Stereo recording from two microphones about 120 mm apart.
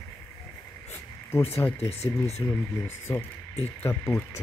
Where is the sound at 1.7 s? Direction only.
60° left (ahead or behind).